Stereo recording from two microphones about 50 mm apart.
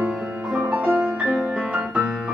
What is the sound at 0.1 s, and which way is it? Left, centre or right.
Music, right.